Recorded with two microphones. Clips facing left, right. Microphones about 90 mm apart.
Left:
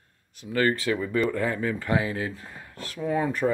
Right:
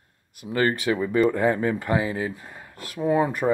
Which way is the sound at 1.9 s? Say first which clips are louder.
Right 2 dB; 10° right (ahead or behind).